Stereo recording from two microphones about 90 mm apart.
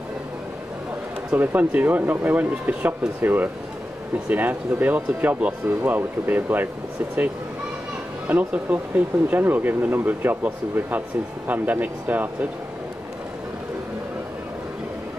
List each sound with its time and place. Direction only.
1.3 s speech: 20° right (ahead or behind)
8.3 s speech: 15° right (ahead or behind)